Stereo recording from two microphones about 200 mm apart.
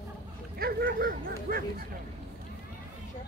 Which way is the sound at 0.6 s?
50° right (ahead or behind).